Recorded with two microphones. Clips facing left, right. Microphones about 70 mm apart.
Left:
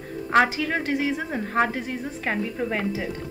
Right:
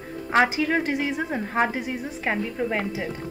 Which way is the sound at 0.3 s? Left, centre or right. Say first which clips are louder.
Even; centre.